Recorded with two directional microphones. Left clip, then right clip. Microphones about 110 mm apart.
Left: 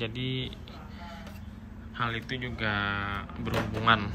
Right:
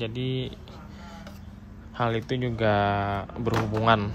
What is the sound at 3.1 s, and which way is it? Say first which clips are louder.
Speech: right 6 dB; 60° right (ahead or behind).